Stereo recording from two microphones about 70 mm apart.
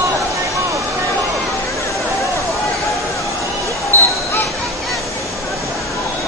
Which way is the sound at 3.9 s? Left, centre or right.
Left.